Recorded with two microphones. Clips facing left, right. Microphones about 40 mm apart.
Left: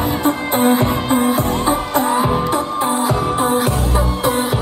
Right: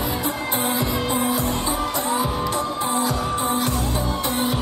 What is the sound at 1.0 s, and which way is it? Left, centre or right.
Music, left.